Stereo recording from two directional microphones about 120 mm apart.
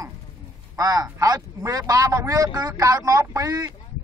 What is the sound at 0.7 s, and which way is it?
A man's voice, 30° right (ahead or behind).